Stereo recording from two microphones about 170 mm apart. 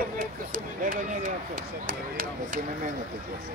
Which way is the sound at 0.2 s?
55° right (ahead or behind).